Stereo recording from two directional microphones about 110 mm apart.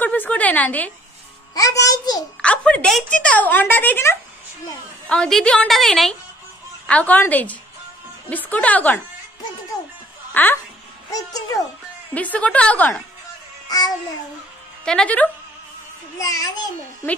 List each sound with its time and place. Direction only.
0.0 s a woman's voice: 15° left (ahead or behind)
1.5 s a child's voice: 30° left (ahead or behind)
2.4 s a child's voice: 10° left (ahead or behind)
5.0 s a woman's voice: 10° left (ahead or behind)
6.9 s a child's voice: 15° left (ahead or behind)
10.3 s a woman's voice: 15° left (ahead or behind)
11.1 s a child's voice: 35° left (ahead or behind)
12.1 s a child's voice: 15° left (ahead or behind)
13.7 s a child's voice: 35° left (ahead or behind)
14.9 s a child's voice: 10° left (ahead or behind)
16.2 s a child's voice: 30° left (ahead or behind)